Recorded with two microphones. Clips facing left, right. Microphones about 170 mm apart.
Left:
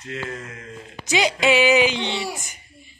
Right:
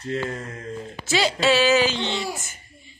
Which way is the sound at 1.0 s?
15° left (ahead or behind).